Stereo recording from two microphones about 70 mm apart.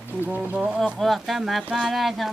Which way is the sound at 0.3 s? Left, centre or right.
Right.